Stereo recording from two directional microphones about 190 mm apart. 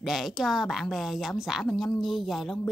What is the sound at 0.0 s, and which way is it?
A woman's voice, centre (ahead or behind).